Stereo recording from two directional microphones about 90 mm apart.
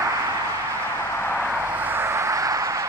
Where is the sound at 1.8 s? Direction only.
25° right (ahead or behind).